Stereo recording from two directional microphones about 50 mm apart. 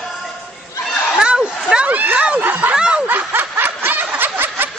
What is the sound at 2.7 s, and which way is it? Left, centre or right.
Snicker, right.